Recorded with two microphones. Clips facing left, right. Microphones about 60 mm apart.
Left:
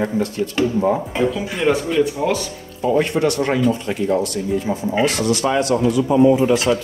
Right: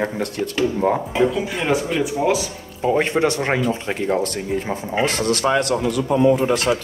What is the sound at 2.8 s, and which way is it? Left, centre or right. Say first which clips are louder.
Speech: left 1 dB; right.